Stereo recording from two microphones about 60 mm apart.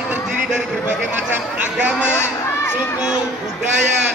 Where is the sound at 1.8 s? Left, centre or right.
Centre.